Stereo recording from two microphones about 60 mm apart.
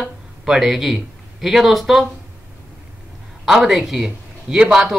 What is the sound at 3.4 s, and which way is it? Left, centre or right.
A man's voice, centre.